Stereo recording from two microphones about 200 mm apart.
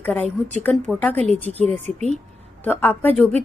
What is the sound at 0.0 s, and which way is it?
A woman's voice, 10° left (ahead or behind).